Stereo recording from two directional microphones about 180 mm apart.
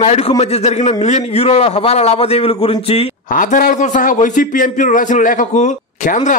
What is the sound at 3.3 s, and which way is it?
A man's voice, 45° left (ahead or behind).